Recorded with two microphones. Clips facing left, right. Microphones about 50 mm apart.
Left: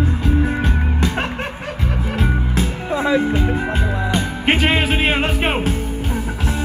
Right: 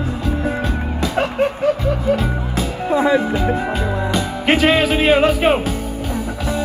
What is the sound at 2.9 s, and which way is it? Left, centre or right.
Music, centre.